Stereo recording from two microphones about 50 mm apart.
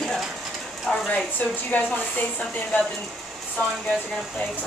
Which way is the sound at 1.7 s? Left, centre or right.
Left.